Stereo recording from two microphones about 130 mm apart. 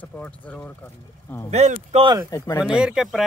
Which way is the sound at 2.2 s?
30° left (ahead or behind).